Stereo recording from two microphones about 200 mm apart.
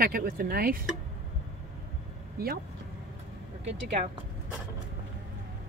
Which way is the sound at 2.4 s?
50° right (ahead or behind).